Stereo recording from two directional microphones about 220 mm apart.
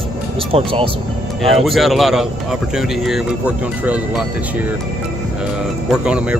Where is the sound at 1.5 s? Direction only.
Centre (ahead or behind).